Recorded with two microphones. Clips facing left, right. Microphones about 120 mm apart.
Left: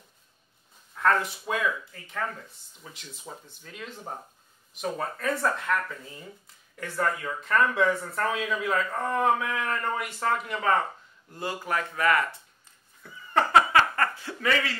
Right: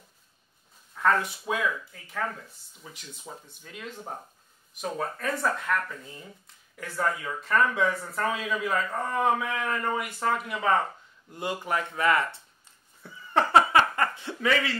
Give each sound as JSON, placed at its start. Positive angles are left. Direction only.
{"t": 0.9, "sound": "speech", "side_deg": 0}
{"t": 11.3, "sound": "speech", "side_deg": -20}
{"t": 13.0, "sound": "cat", "side_deg": -30}
{"t": 13.9, "sound": "chuckle", "side_deg": -20}